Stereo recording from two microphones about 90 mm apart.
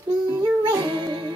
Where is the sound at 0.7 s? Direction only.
50° right (ahead or behind).